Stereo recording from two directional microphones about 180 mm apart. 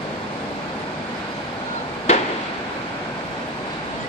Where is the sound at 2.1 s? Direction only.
40° left (ahead or behind).